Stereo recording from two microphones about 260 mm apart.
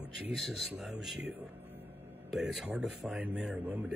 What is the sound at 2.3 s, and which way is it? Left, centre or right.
Speech, centre.